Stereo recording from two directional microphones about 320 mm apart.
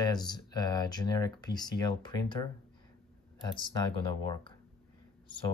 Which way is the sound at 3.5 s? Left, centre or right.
Centre.